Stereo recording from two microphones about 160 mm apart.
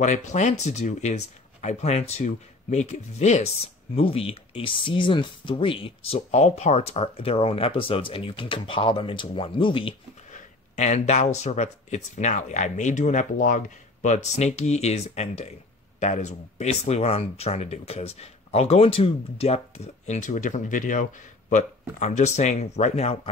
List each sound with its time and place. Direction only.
0.0 s speech: 50° left (ahead or behind); by 9.9 s 30° left (ahead or behind)
10.3 s speech: 45° left (ahead or behind)